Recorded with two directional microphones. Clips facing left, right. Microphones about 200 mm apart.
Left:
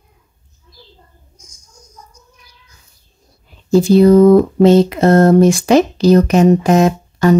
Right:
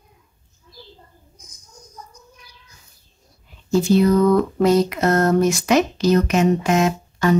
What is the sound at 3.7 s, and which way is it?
Speech, 35° left (ahead or behind).